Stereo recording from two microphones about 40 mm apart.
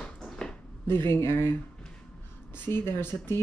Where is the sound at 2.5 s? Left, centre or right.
Left.